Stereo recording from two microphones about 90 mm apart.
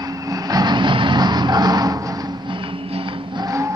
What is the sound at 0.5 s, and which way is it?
Music, 50° right (ahead or behind).